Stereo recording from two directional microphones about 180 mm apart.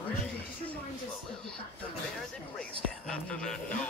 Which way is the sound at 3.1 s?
5° left (ahead or behind).